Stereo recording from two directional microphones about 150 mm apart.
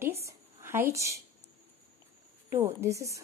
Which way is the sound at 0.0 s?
20° right (ahead or behind).